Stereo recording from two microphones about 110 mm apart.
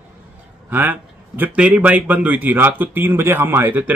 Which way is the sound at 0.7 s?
15° right (ahead or behind).